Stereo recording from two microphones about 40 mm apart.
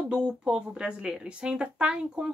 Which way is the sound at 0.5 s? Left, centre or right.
Right.